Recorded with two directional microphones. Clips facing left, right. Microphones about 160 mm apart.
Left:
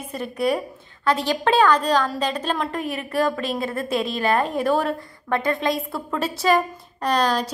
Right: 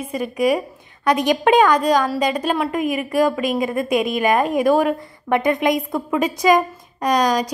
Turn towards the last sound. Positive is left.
turn(degrees=-10)  # may be behind; listen again after turning